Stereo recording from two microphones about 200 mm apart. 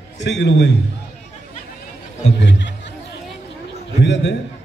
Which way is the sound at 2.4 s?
60° left (ahead or behind).